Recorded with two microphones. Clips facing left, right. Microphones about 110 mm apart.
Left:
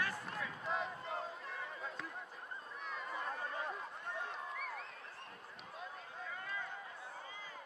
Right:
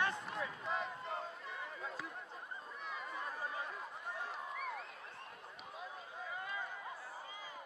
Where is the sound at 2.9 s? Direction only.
Centre (ahead or behind).